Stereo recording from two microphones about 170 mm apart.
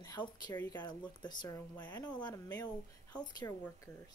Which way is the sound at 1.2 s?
25° left (ahead or behind).